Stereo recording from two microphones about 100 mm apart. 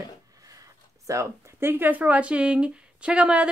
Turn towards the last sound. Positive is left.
turn(degrees=-10)  # may be behind; listen again after turning